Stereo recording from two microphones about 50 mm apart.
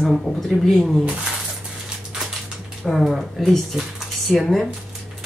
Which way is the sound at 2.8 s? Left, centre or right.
Centre.